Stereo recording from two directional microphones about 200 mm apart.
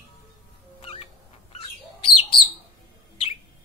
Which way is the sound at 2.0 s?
25° left (ahead or behind).